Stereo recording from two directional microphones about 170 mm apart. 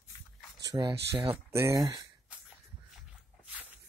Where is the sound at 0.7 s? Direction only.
25° right (ahead or behind).